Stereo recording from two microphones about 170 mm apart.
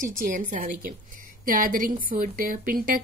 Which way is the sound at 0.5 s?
55° right (ahead or behind).